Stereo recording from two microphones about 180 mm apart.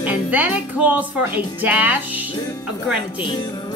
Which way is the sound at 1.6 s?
10° right (ahead or behind).